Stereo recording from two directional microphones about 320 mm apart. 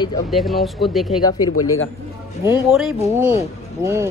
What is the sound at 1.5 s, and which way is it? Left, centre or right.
Speech, left.